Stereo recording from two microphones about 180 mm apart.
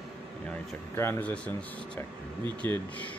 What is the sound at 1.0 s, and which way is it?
Speech, 10° left (ahead or behind).